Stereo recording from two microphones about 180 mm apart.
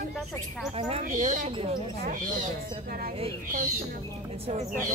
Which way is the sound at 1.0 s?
45° right (ahead or behind).